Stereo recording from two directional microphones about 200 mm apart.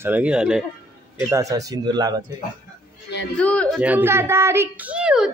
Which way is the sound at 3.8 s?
10° right (ahead or behind).